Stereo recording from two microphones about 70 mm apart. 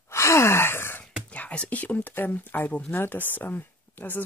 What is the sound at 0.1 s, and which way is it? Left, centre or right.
Sigh, left.